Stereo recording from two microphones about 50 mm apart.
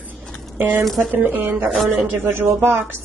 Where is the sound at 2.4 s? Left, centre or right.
Right.